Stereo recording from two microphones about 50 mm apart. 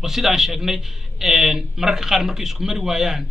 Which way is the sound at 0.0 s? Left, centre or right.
Centre.